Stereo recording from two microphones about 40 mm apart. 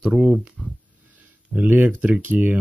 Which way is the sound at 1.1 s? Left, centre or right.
Right.